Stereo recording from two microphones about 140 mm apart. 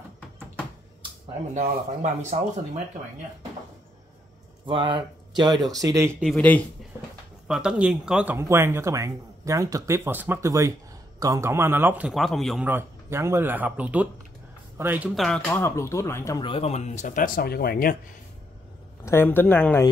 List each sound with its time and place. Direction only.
1.5 s speech: 55° right (ahead or behind)
4.6 s speech: 35° right (ahead or behind)
6.3 s speech: 10° left (ahead or behind)
7.4 s speech: 5° right (ahead or behind)
8.4 s speech: 20° right (ahead or behind)
12.2 s speech: centre (ahead or behind)
12.6 s speech: 15° right (ahead or behind)
15.1 s speech: centre (ahead or behind)
15.4 s speech: 15° left (ahead or behind)
16.3 s speech: 40° left (ahead or behind); by 17.9 s 90° left
19.0 s speech: 15° left (ahead or behind)